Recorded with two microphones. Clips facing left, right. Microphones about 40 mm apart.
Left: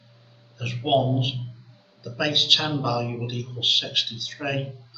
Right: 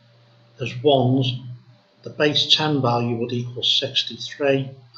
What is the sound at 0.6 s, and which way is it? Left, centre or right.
Speech, centre.